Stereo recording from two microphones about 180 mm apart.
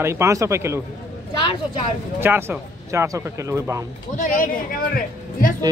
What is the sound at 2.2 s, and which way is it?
Speech, 10° right (ahead or behind).